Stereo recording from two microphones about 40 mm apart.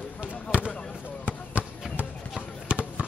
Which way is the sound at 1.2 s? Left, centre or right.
Right.